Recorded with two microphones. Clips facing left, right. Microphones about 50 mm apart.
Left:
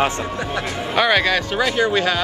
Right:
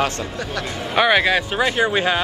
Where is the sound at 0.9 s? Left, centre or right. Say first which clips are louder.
Right 1 dB; centre.